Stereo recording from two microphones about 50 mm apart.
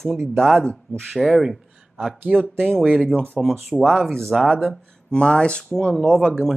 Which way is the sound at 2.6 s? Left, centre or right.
Centre.